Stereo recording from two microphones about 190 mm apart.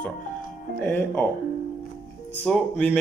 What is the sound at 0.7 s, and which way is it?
Speech, 5° left (ahead or behind).